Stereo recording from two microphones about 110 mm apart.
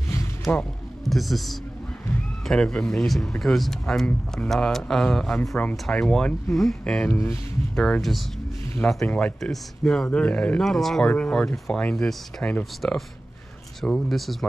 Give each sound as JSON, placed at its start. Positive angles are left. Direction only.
{"t": 0.1, "sound": "music", "side_deg": 25}
{"t": 0.6, "sound": "speech", "side_deg": 0}
{"t": 7.1, "sound": "speech", "side_deg": 25}
{"t": 7.7, "sound": "speech", "side_deg": 5}
{"t": 13.7, "sound": "speech", "side_deg": 5}